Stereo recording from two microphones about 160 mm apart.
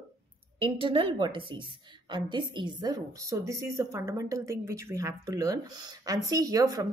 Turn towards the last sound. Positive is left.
turn(degrees=-20)  # may be behind; listen again after turning